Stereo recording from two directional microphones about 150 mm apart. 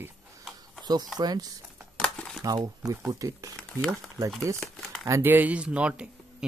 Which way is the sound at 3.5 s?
10° left (ahead or behind).